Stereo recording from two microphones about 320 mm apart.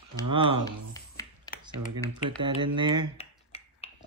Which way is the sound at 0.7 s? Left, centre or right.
Centre.